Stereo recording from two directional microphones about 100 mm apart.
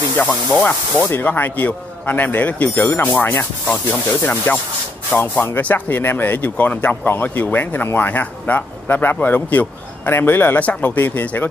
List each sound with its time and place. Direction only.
0.2 s speech: 15° left (ahead or behind)